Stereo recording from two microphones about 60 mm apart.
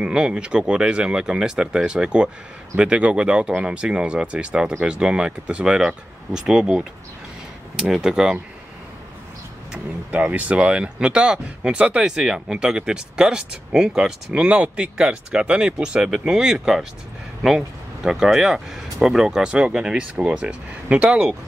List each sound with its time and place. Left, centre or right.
0.0 s speech: centre
10.1 s speech: right
14.4 s speech: right